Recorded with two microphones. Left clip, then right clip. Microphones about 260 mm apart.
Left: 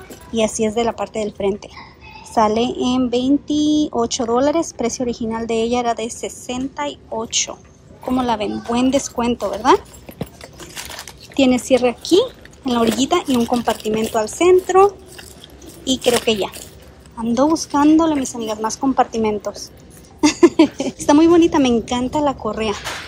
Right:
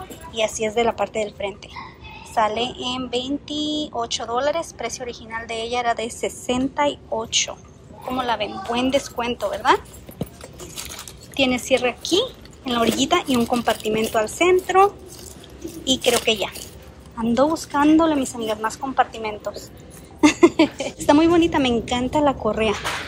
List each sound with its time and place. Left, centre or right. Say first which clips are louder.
0.3 s speech: left 4 dB; centre